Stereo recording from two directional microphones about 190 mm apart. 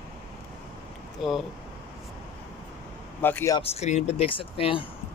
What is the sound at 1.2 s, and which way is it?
Speech, centre (ahead or behind).